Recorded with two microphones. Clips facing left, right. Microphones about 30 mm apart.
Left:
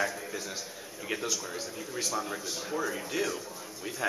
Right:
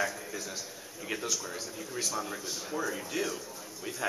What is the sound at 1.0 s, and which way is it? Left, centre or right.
A man's voice, centre.